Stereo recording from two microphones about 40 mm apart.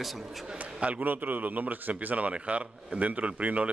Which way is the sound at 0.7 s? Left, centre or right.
Right.